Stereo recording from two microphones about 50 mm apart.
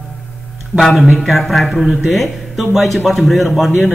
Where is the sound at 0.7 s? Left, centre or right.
Left.